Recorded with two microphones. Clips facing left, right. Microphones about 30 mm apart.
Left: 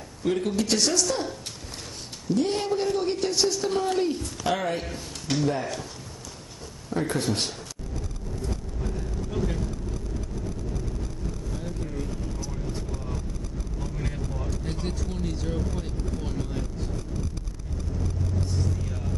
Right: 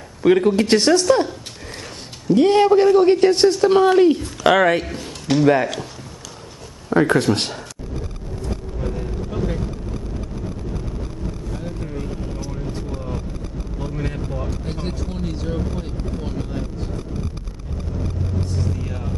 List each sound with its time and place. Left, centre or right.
0.5 s a man's voice: right
2.3 s a man's voice: right
4.4 s speech: right
5.4 s a man's voice: right
6.9 s a man's voice: right
8.5 s vehicle: right
18.4 s vehicle: right